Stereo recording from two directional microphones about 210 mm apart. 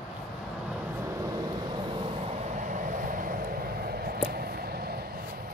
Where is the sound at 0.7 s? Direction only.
10° right (ahead or behind).